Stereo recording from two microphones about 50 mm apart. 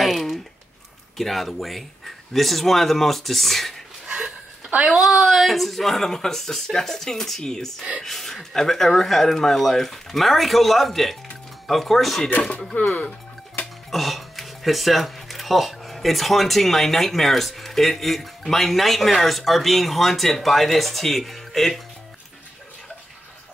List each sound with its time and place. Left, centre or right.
0.0 s a sound: centre
1.1 s speech: centre
4.8 s speech: centre
12.7 s speech: left
13.8 s speech: centre